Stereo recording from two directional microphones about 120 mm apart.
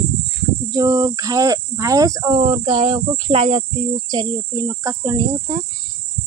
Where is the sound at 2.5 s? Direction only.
40° right (ahead or behind).